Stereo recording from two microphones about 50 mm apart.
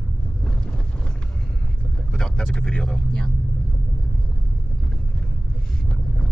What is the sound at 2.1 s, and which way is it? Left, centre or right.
Speech, centre.